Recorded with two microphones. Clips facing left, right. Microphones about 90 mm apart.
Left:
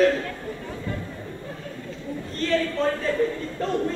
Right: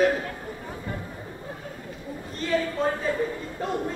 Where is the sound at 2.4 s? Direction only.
15° right (ahead or behind).